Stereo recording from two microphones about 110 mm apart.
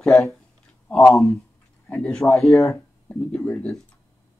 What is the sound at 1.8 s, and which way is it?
Speech, 15° left (ahead or behind).